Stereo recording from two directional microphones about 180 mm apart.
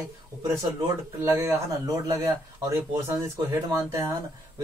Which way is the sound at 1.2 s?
15° right (ahead or behind).